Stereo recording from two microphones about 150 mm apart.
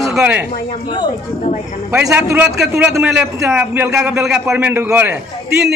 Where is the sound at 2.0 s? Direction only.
20° right (ahead or behind).